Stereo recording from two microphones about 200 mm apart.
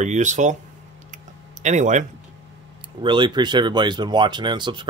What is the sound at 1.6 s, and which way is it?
Speech, 35° right (ahead or behind).